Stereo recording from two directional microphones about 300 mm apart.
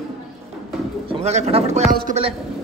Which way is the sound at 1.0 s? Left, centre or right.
Centre.